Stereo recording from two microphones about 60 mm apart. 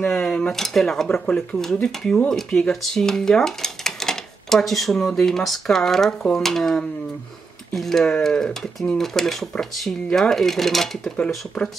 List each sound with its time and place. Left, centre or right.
0.2 s speech: centre
1.2 s speech: centre
1.6 s speech: centre
10.3 s speech: centre